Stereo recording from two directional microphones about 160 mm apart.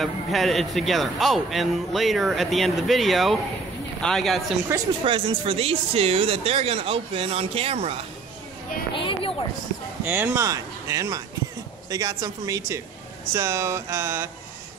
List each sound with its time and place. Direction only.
0.0 s speech: centre (ahead or behind)
5.0 s speech: 35° right (ahead or behind)
8.9 s speech: 30° left (ahead or behind)
10.0 s speech: 10° right (ahead or behind)